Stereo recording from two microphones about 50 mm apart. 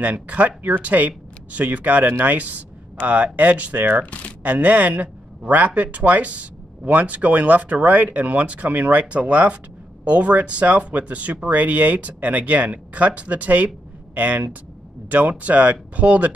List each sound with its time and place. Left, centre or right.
0.0 s speech: right
4.0 s speech: left
4.4 s a man's voice: right